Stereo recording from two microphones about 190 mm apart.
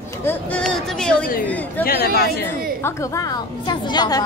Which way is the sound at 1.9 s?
55° left (ahead or behind).